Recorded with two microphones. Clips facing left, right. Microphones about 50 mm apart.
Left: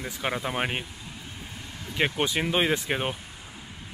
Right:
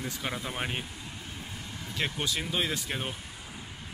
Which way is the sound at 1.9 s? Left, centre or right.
Left.